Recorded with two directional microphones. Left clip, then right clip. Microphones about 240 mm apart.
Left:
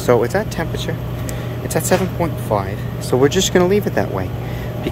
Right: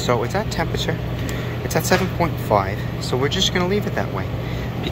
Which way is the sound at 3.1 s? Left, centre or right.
Left.